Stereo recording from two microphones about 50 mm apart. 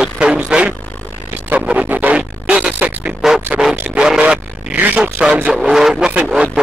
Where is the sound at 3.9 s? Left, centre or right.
Centre.